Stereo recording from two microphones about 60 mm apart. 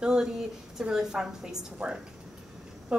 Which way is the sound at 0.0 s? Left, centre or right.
Centre.